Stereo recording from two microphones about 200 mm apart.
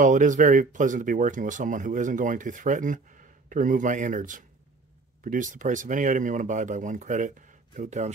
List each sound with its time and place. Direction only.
0.0 s speech: 40° right (ahead or behind)